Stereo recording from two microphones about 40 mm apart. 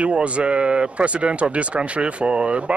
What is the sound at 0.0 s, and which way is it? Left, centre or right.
A man's voice, right.